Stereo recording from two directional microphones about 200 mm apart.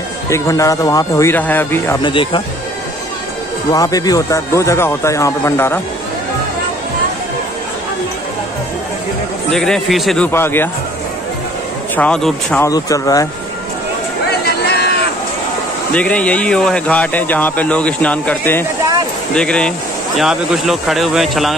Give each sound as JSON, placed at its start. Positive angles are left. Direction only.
{"t": 0.3, "sound": "speech", "side_deg": 15}
{"t": 2.0, "sound": "speech", "side_deg": 25}
{"t": 3.7, "sound": "speech", "side_deg": 15}
{"t": 9.5, "sound": "speech", "side_deg": 0}
{"t": 11.9, "sound": "speech", "side_deg": 5}
{"t": 12.6, "sound": "speech", "side_deg": 15}
{"t": 14.7, "sound": "a sound", "side_deg": 55}
{"t": 15.9, "sound": "speech", "side_deg": 5}